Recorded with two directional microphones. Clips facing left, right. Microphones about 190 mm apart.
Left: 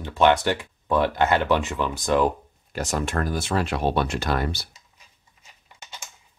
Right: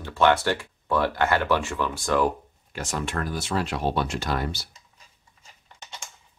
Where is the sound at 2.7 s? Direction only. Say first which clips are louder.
Left 4 dB; 40° left (ahead or behind); by 4.6 s 60° left (ahead or behind).